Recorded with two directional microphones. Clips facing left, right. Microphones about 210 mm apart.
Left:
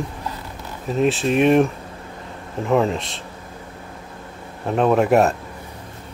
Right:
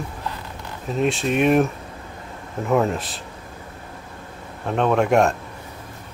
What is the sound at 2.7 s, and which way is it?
Speech, centre (ahead or behind).